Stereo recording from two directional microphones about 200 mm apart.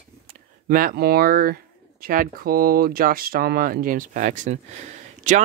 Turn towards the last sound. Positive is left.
turn(degrees=-35)  # may be behind; listen again after turning